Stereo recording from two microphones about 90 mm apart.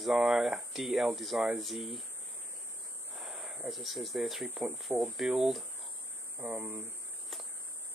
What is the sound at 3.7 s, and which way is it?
Speech, centre (ahead or behind).